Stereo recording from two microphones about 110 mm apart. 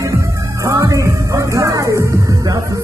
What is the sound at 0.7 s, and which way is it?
Music, 30° right (ahead or behind).